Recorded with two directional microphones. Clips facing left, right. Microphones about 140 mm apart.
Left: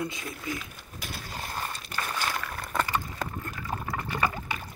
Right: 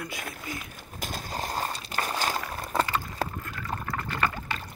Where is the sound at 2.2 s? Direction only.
20° right (ahead or behind).